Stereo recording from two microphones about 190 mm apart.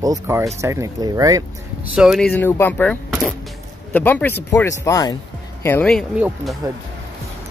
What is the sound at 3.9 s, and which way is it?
Speech, 10° left (ahead or behind).